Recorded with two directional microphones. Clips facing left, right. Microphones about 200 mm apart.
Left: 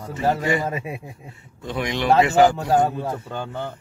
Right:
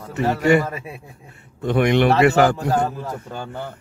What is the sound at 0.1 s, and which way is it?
Speech, 70° right (ahead or behind).